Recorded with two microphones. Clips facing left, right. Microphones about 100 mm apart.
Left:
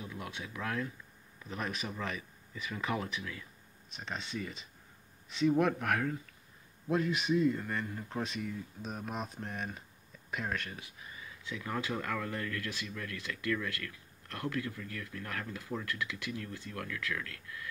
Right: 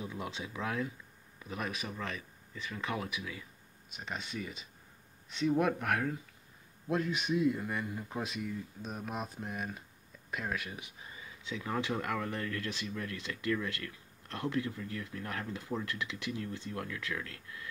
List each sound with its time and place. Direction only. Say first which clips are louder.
0.0 s speech: right 2 dB; 25° right (ahead or behind)
1.4 s speech: even; 5° right (ahead or behind)
3.1 s speech: even; 10° right (ahead or behind)
11.4 s speech: right 2 dB; 20° right (ahead or behind)